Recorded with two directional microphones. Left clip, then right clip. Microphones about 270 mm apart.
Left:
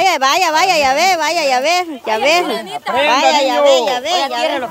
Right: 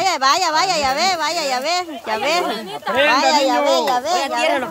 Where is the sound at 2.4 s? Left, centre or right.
Left.